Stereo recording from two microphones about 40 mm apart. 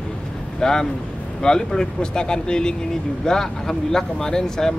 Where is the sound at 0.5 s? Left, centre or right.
Centre.